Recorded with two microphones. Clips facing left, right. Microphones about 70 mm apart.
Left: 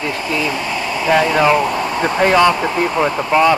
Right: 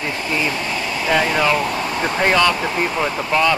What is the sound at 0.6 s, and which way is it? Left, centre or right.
Vehicle, centre.